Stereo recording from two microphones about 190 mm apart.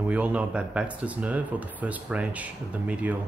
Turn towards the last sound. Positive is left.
turn(degrees=-5)  # may be behind; listen again after turning